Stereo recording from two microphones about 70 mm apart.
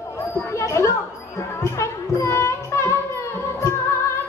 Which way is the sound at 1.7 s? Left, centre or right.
Left.